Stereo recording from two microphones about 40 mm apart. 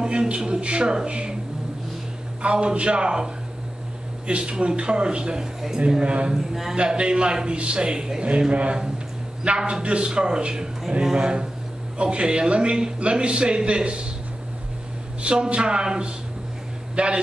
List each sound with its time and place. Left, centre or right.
0.0 s a man's voice: right
2.4 s a man's voice: right
4.3 s a man's voice: right
6.3 s a man's voice: centre
6.7 s a man's voice: right
15.2 s a man's voice: right